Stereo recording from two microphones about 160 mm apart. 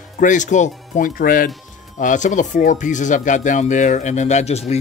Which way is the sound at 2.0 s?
50° left (ahead or behind).